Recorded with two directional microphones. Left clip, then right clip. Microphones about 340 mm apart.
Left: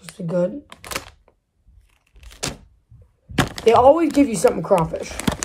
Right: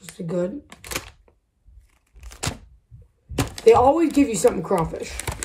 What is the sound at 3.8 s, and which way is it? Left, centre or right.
Speech, centre.